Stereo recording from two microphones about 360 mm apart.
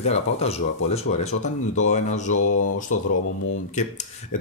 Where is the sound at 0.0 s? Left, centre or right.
Centre.